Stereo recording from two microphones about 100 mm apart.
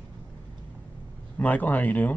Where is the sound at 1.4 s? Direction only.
15° left (ahead or behind).